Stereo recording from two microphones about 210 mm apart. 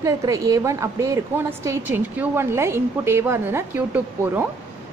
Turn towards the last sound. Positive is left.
turn(degrees=-10)  # may be behind; listen again after turning